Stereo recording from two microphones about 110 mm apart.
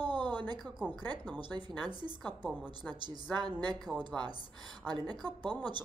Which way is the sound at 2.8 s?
40° right (ahead or behind).